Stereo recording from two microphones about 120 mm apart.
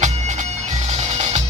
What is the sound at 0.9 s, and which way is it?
Music, 85° right.